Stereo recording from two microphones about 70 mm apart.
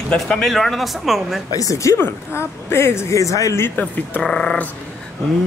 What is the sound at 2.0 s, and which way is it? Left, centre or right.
A woman's voice, left.